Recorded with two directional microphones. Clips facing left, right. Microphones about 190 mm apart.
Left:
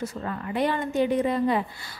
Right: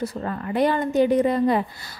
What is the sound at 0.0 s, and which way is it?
A woman's voice, 40° right (ahead or behind).